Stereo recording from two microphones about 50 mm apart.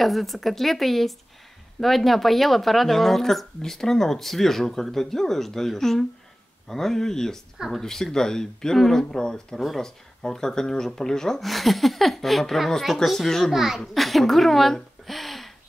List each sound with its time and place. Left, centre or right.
0.0 s speech: centre
7.5 s speech: centre
7.8 s speech: centre
13.5 s a child's voice: centre